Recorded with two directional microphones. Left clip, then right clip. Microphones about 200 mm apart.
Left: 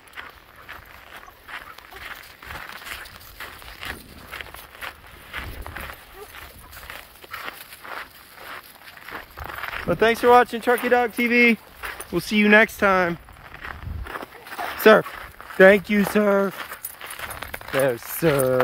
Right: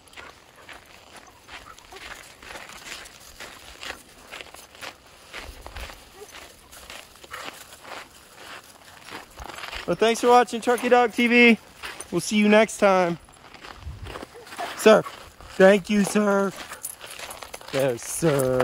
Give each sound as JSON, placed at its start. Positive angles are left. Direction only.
{"t": 2.0, "sound": "a sound", "side_deg": -5}
{"t": 4.3, "sound": "walk", "side_deg": 0}
{"t": 7.4, "sound": "walk", "side_deg": 5}
{"t": 9.5, "sound": "speech", "side_deg": 10}
{"t": 11.1, "sound": "speech", "side_deg": -10}
{"t": 12.1, "sound": "speech", "side_deg": 0}
{"t": 14.0, "sound": "a sound", "side_deg": 15}
{"t": 15.5, "sound": "speech", "side_deg": 15}
{"t": 17.2, "sound": "a sound", "side_deg": 0}
{"t": 18.3, "sound": "speech", "side_deg": 15}